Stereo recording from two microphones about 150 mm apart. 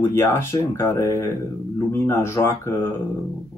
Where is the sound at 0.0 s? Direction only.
15° left (ahead or behind).